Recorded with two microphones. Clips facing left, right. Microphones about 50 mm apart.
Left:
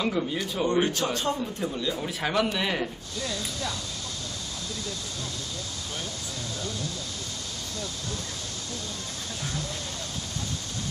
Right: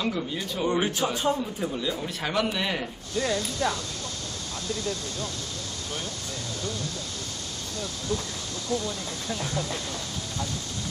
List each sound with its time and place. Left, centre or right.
0.0 s speech: centre
0.7 s a man's voice: centre
3.2 s speech: right
9.3 s speech: right